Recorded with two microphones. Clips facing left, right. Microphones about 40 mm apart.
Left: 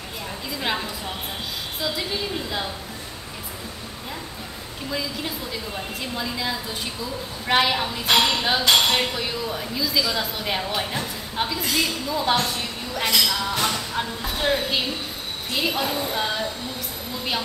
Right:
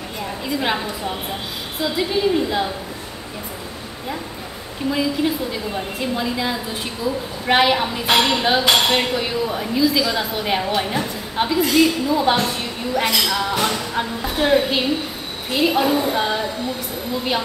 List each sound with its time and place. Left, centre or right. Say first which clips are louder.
0.6 s speech: right 4 dB; centre
5.9 s speech: right 6 dB; centre